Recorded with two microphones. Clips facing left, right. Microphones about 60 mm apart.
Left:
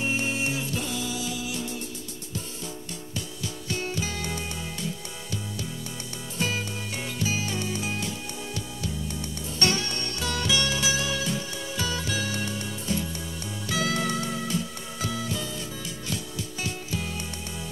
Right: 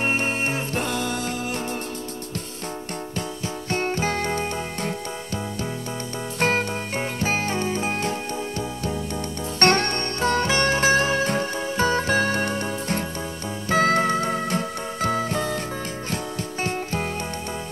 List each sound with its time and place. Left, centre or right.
0.0 s music: right
3.7 s music: right
6.4 s music: right
16.6 s music: right